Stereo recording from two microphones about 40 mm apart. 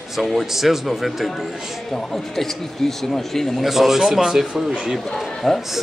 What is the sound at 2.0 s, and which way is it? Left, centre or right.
Speech, centre.